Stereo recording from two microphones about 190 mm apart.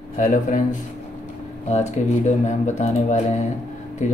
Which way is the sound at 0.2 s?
40° left (ahead or behind).